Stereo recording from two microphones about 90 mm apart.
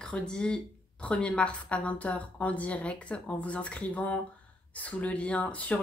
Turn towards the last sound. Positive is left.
turn(degrees=15)  # may be behind; listen again after turning